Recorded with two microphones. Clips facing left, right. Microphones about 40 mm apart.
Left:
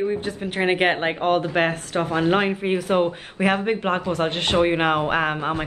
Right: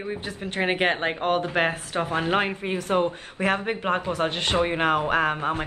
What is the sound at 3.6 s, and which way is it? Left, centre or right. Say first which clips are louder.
Speech: left 3 dB; centre.